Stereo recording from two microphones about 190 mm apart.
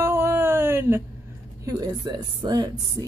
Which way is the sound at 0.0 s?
15° right (ahead or behind).